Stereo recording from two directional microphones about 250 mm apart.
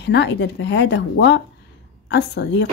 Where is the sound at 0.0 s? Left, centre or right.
Left.